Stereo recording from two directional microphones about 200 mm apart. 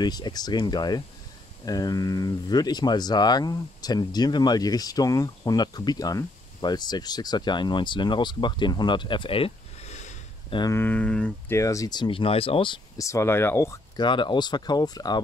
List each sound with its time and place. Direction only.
0.0 s speech: 20° left (ahead or behind)
10.5 s speech: 15° left (ahead or behind)